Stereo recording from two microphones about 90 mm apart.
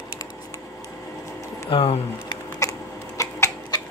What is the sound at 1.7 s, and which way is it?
Speech, 75° left (ahead or behind).